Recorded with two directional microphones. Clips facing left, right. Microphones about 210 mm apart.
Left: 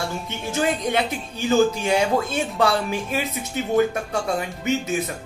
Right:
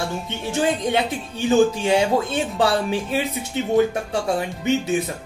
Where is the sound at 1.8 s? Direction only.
30° right (ahead or behind).